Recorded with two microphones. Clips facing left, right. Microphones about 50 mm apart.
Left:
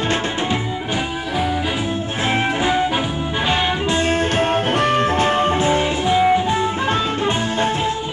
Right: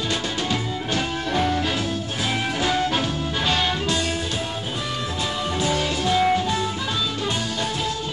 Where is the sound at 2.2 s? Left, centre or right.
Left.